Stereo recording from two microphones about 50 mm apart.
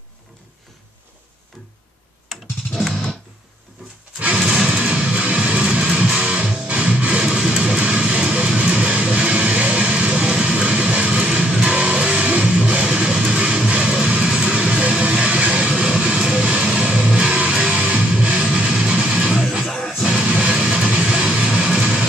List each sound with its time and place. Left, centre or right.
2.2 s computer keyboard: centre
4.4 s music: centre
4.6 s music: right
19.6 s music: centre
19.9 s music: centre
20.2 s music: right